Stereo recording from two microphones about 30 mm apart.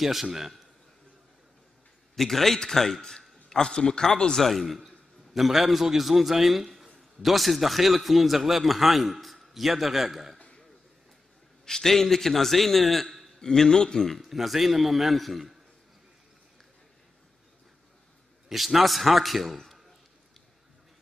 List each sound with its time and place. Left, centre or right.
0.0 s a man's voice: centre
2.1 s a man's voice: centre
4.4 s a man's voice: centre
11.6 s a man's voice: centre
13.4 s speech: left
13.9 s a man's voice: centre
18.5 s a man's voice: centre